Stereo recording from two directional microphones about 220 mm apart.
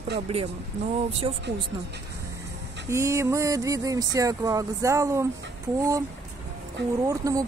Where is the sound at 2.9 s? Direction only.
15° right (ahead or behind).